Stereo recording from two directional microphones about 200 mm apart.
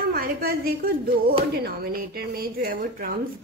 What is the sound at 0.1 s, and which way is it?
A woman's voice, 50° right (ahead or behind).